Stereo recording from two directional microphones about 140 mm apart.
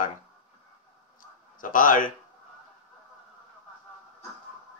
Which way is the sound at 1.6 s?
75° left (ahead or behind).